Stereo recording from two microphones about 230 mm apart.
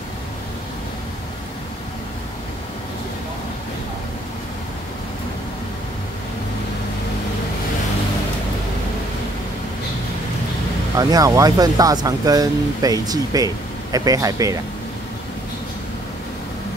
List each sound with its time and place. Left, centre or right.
11.0 s speech: centre